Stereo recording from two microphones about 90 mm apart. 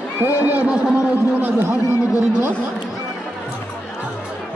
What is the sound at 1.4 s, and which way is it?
Speech, 25° right (ahead or behind).